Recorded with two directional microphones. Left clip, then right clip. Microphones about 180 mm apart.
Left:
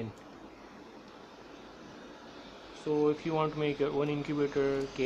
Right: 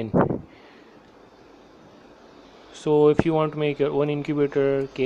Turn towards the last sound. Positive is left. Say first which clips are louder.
# right 8 dB
turn(degrees=-30)  # may be behind; listen again after turning